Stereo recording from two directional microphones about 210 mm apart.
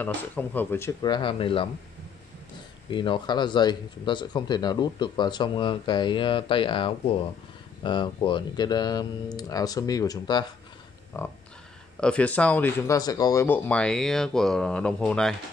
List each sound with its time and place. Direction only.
0.0 s speech: 10° left (ahead or behind); by 1.7 s 25° left (ahead or behind)
2.9 s speech: 25° left (ahead or behind); by 15.3 s 5° left (ahead or behind)